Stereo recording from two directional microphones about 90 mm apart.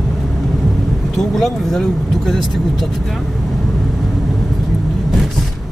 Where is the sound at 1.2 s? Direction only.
5° left (ahead or behind).